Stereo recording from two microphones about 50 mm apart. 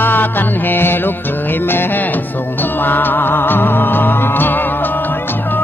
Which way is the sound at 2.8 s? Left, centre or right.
Left.